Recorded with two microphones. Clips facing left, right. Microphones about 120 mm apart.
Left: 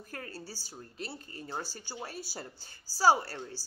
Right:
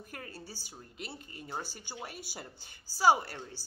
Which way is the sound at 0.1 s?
20° right (ahead or behind).